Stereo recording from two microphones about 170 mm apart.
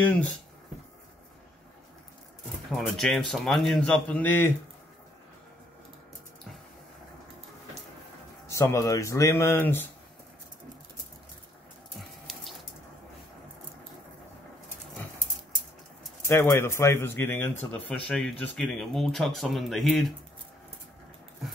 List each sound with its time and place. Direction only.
0.0 s a man's voice: 10° left (ahead or behind)
2.7 s a man's voice: centre (ahead or behind)
8.5 s a man's voice: 15° left (ahead or behind)
16.3 s a man's voice: 15° left (ahead or behind)